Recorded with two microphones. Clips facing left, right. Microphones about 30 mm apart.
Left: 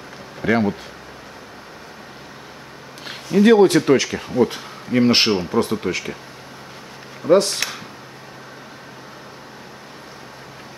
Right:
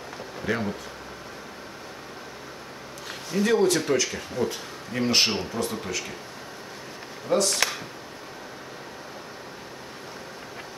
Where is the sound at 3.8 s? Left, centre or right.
Left.